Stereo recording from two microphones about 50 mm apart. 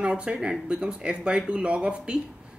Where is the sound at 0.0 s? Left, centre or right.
Centre.